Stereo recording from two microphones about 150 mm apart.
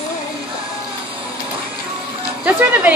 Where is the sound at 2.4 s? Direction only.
10° right (ahead or behind).